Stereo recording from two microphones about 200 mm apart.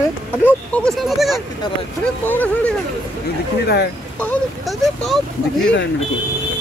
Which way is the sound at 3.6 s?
55° left (ahead or behind).